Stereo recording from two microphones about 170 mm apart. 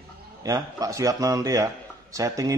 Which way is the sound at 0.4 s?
20° right (ahead or behind).